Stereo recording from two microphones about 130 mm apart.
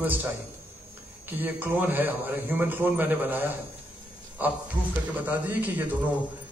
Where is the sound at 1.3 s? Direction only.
15° right (ahead or behind).